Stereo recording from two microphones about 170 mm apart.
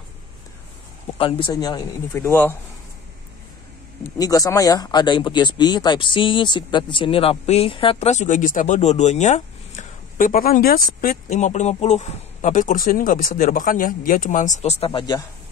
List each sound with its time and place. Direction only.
1.1 s speech: 30° left (ahead or behind)
2.1 s speech: 10° left (ahead or behind)
4.2 s speech: 20° left (ahead or behind)